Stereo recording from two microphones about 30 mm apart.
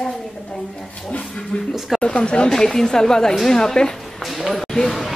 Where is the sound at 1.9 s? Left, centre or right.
Left.